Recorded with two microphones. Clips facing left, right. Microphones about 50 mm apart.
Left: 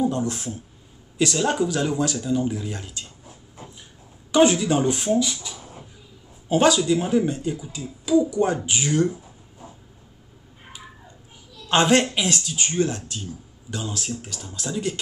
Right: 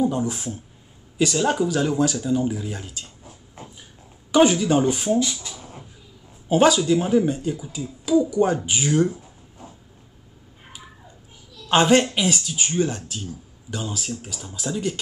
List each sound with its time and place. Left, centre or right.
0.1 s speech: centre
4.3 s speech: centre
6.5 s speech: centre
9.1 s a sound: centre
11.7 s speech: centre